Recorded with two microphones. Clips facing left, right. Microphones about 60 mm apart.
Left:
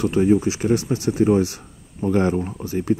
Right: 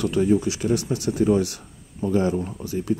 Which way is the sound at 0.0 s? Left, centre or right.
Left.